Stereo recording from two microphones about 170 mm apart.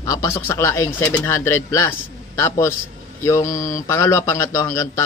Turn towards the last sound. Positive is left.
turn(degrees=15)  # may be behind; listen again after turning